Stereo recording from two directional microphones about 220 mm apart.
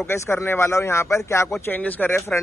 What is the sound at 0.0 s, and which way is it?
Speech, 10° left (ahead or behind).